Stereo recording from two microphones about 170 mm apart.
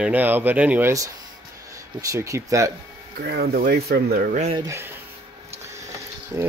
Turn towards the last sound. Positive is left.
turn(degrees=-15)  # may be behind; listen again after turning